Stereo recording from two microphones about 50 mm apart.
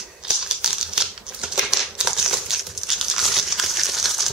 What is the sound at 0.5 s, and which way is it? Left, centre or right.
Crumpling, centre.